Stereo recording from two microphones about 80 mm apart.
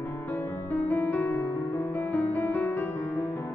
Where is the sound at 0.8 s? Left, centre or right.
Left.